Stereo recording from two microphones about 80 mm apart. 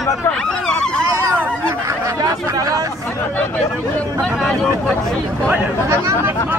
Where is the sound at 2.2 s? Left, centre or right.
Right.